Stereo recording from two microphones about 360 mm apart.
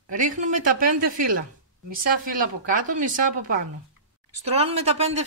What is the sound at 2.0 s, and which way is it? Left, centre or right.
Speech, right.